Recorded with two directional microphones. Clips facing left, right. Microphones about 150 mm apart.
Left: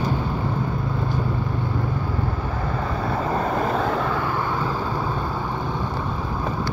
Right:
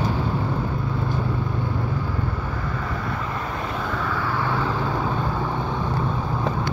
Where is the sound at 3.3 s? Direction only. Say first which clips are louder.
Left 7 dB; 40° left (ahead or behind).